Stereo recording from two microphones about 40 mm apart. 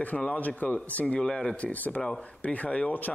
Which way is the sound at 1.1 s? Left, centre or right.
Left.